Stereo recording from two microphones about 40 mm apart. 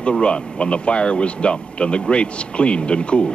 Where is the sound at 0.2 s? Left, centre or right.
Left.